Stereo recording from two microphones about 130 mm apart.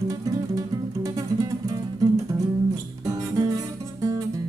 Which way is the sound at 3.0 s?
30° right (ahead or behind).